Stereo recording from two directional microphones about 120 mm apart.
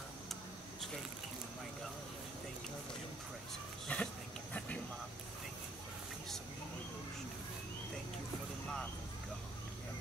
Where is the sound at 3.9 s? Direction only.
10° left (ahead or behind).